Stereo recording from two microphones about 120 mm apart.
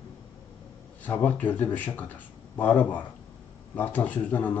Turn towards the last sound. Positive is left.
turn(degrees=15)  # may be behind; listen again after turning